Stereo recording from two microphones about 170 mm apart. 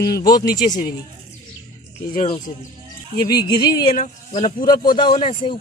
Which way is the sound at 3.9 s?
45° left (ahead or behind).